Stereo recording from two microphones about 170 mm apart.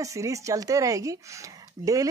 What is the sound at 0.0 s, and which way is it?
Speech, 20° right (ahead or behind).